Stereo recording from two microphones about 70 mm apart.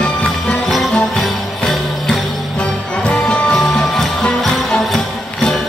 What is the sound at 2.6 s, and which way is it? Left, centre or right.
Music, centre.